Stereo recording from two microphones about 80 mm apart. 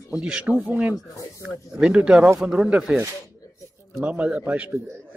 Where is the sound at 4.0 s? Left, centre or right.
Centre.